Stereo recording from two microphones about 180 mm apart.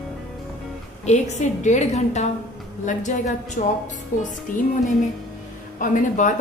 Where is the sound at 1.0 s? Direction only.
40° left (ahead or behind).